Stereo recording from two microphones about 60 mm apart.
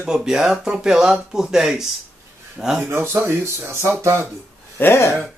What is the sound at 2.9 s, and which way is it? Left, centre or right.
Speech, right.